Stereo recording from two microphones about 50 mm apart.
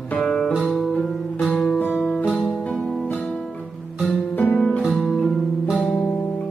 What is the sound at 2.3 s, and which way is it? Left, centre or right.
Music, left.